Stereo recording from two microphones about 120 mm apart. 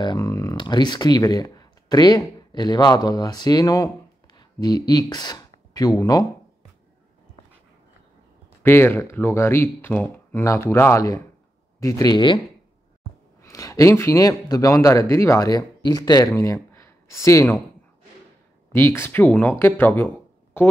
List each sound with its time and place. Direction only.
0.0 s speech: 30° left (ahead or behind)
8.6 s a man's voice: 20° left (ahead or behind); by 12.4 s 40° left (ahead or behind)
13.4 s a man's voice: 25° left (ahead or behind)
18.7 s a man's voice: 20° left (ahead or behind)